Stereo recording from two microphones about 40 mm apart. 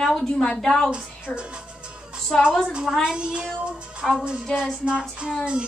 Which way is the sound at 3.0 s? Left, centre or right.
Right.